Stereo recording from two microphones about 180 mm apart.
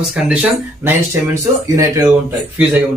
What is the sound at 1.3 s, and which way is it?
Speech, 15° right (ahead or behind).